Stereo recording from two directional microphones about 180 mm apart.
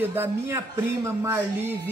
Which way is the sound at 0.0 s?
10° right (ahead or behind).